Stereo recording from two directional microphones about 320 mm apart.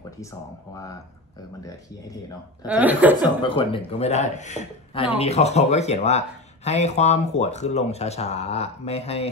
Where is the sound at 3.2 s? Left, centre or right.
Centre.